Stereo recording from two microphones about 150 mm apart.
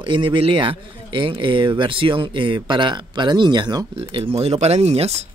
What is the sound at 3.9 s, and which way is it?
Speech, 40° right (ahead or behind).